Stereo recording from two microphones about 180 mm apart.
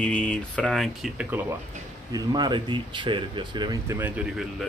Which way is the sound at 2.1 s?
25° right (ahead or behind).